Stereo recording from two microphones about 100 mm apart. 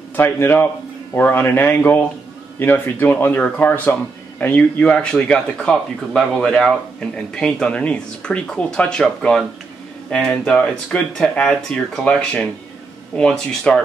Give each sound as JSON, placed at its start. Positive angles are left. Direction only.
{"t": 0.1, "sound": "speech", "side_deg": 20}
{"t": 10.3, "sound": "speech", "side_deg": 15}